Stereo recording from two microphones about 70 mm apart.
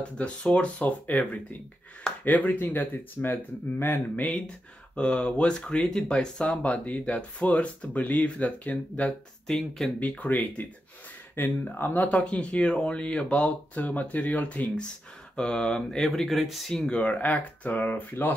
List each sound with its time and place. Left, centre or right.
0.0 s speech: centre
2.2 s speech: left
4.9 s speech: centre
9.9 s speech: left
12.1 s speech: centre
15.3 s speech: centre; by 18.3 s left